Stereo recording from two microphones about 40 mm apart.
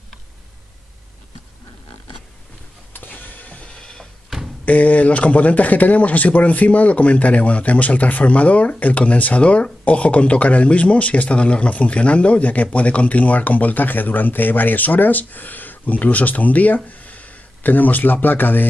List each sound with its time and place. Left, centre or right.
2.9 s vehicle: left
3.7 s a sound: left
4.6 s speech: left